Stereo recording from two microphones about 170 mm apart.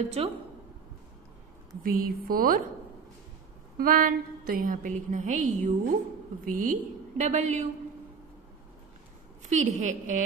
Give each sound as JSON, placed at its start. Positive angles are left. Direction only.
{"t": 0.2, "sound": "a woman's voice", "side_deg": -40}
{"t": 1.8, "sound": "a woman's voice", "side_deg": -55}
{"t": 3.7, "sound": "a woman's voice", "side_deg": -55}
{"t": 9.4, "sound": "a woman's voice", "side_deg": -45}